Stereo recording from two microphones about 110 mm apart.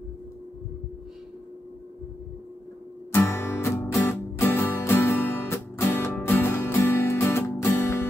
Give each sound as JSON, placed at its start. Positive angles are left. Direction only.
{"t": 3.1, "sound": "music", "side_deg": 25}